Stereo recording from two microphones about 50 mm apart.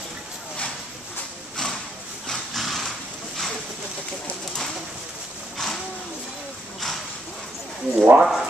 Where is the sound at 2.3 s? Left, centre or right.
Centre.